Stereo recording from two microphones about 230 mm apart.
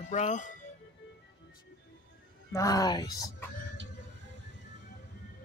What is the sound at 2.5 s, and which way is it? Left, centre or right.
Speech, centre.